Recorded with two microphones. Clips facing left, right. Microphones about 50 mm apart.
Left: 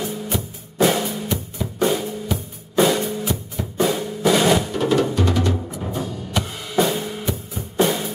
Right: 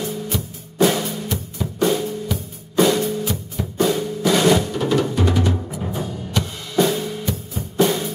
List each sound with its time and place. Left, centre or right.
0.0 s music: centre
1.6 s drum: centre
5.1 s music: centre
6.3 s music: centre
7.8 s music: centre